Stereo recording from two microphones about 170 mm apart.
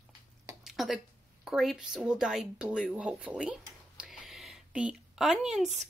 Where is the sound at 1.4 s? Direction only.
Centre (ahead or behind).